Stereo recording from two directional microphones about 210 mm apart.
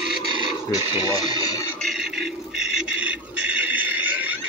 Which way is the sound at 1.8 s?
Centre (ahead or behind).